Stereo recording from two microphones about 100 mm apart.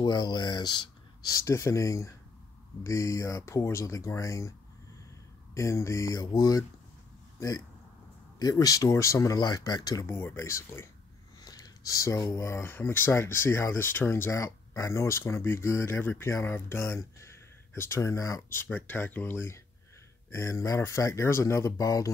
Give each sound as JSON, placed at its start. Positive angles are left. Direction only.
{"t": 0.0, "sound": "speech", "side_deg": 45}
{"t": 1.3, "sound": "speech", "side_deg": 30}
{"t": 10.0, "sound": "speech", "side_deg": 25}
{"t": 11.4, "sound": "speech", "side_deg": 40}